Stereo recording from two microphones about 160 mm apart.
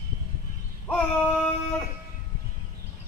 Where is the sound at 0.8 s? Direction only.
10° left (ahead or behind).